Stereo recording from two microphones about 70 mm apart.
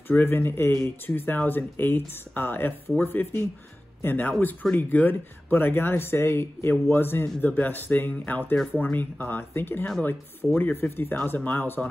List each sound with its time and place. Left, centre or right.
0.1 s speech: left
11.2 s speech: left